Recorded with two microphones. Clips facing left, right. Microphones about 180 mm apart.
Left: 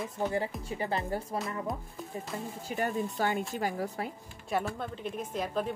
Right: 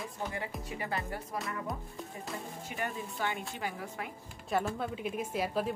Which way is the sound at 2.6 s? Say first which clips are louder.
Left 8 dB; 40° left (ahead or behind).